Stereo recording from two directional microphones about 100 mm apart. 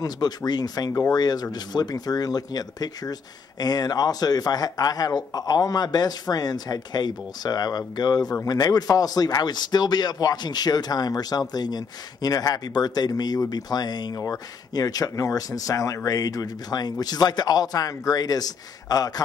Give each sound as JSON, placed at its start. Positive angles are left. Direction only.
{"t": 0.5, "sound": "speech", "side_deg": 45}